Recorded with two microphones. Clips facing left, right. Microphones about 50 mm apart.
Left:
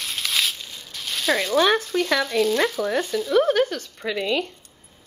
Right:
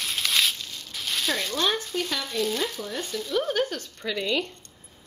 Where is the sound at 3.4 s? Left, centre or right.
Left.